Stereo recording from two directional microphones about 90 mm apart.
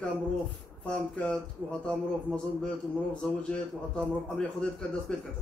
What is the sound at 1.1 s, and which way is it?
A man's voice, 10° left (ahead or behind).